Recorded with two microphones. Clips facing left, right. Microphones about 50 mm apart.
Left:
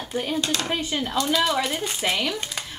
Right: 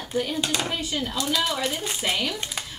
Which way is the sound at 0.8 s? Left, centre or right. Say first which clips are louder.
Left 2 dB; left.